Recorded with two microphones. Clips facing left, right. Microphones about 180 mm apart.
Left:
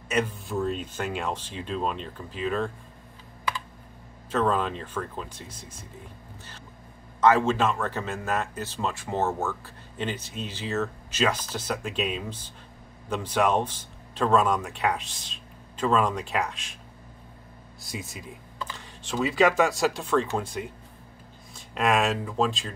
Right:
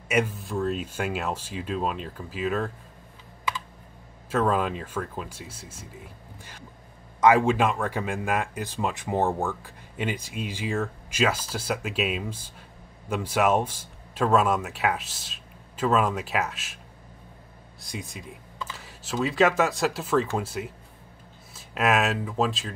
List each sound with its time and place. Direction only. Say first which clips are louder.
0.1 s speech: right 2 dB; 5° right (ahead or behind)
4.3 s a man's voice: right 1 dB; 10° right (ahead or behind)
7.2 s a man's voice: right 1 dB; 15° right (ahead or behind)
17.8 s speech: even; centre (ahead or behind)